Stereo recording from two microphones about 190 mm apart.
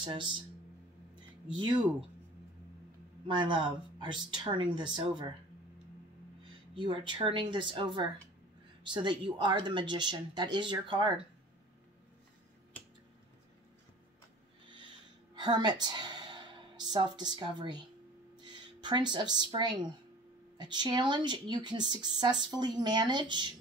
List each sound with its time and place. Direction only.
0.0 s speech: 25° right (ahead or behind)
1.6 s speech: 25° right (ahead or behind)
3.3 s speech: 25° right (ahead or behind)
6.7 s speech: 25° right (ahead or behind)
15.3 s a woman's voice: 20° right (ahead or behind)